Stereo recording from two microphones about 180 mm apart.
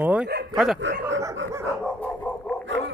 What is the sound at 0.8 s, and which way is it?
Speech, 90° right.